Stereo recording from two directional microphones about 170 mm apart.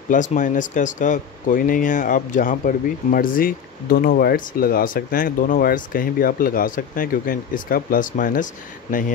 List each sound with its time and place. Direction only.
0.1 s speech: 50° left (ahead or behind)